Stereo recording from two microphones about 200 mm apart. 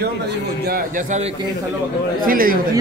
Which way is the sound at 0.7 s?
45° right (ahead or behind).